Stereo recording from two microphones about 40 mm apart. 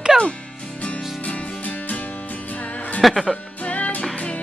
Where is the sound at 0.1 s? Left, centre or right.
Centre.